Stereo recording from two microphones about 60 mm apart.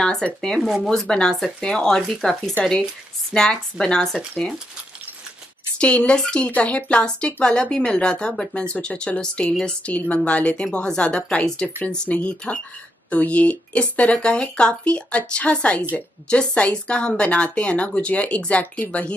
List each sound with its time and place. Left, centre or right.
0.0 s speech: centre
5.8 s speech: centre